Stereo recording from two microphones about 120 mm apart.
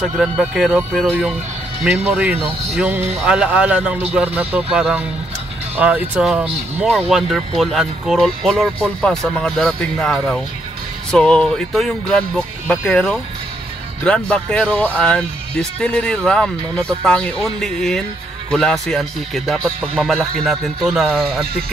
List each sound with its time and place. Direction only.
0.0 s speech: 5° right (ahead or behind)
6.9 s speech: centre (ahead or behind)